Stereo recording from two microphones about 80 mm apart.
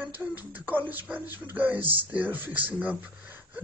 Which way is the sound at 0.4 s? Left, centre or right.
Right.